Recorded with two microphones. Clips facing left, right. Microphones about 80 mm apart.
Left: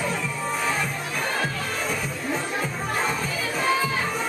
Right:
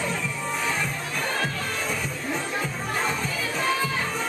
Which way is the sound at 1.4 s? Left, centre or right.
Centre.